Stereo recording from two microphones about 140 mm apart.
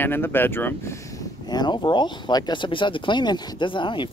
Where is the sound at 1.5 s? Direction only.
30° left (ahead or behind).